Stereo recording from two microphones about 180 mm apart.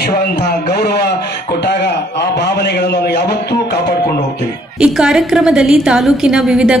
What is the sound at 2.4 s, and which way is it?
Speech, 65° left (ahead or behind).